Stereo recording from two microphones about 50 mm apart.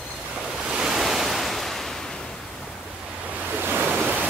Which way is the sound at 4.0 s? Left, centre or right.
Right.